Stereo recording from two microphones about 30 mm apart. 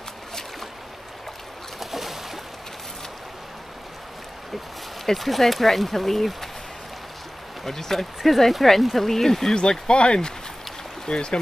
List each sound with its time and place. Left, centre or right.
1.8 s boat: centre
5.0 s speech: centre
7.6 s speech: centre
9.6 s speech: left